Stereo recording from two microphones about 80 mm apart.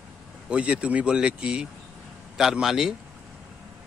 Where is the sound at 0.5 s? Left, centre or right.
Centre.